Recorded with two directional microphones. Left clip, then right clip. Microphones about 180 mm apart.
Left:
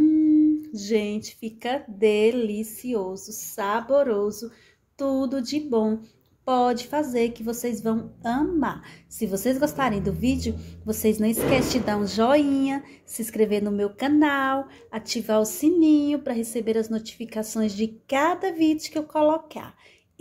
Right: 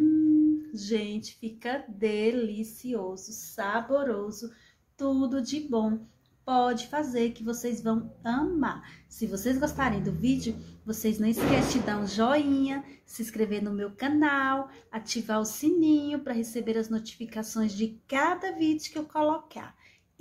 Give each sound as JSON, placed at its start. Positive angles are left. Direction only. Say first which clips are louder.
{"t": 0.7, "sound": "a woman's voice", "louder": "left 6 dB", "side_deg": 25}